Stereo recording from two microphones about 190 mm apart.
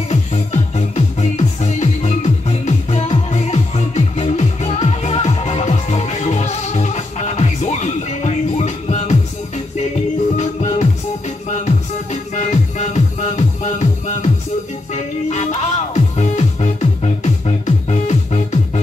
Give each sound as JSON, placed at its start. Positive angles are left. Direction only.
{"t": 0.1, "sound": "music", "side_deg": 35}
{"t": 10.3, "sound": "music", "side_deg": 35}